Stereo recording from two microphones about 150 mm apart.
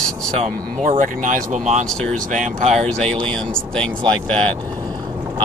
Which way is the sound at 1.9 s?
5° left (ahead or behind).